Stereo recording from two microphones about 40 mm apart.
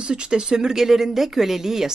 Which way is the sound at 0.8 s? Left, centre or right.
Centre.